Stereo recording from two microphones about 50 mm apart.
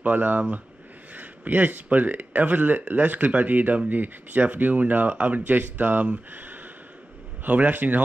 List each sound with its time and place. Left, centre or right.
0.0 s speech: right